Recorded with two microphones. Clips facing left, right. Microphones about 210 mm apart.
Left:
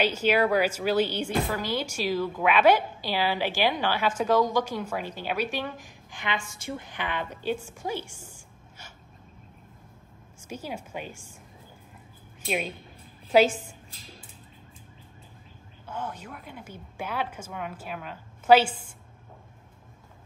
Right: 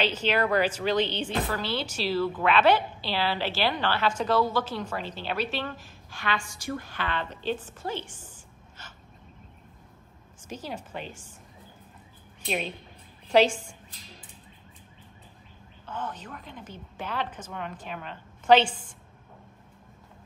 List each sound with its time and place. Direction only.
0.0 s speech: 10° left (ahead or behind)
10.4 s speech: 10° left (ahead or behind)
12.4 s speech: 5° left (ahead or behind)
15.9 s speech: 10° left (ahead or behind)